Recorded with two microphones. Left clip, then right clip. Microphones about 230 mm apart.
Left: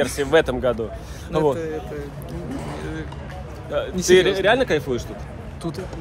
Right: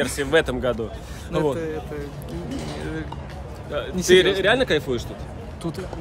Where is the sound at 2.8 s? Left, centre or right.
Right.